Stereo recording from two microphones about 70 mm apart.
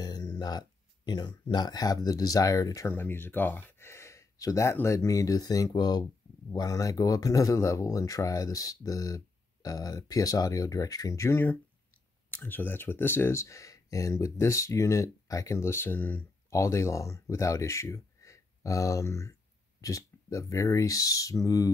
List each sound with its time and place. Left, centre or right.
0.0 s speech: left
2.9 s speech: left
3.9 s a sound: left
4.8 s speech: left
6.5 s speech: left
12.3 s speech: left
16.4 s speech: left